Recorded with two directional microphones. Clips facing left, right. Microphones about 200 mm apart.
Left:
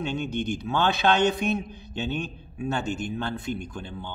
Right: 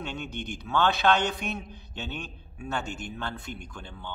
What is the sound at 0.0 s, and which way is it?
A man's voice, 20° left (ahead or behind).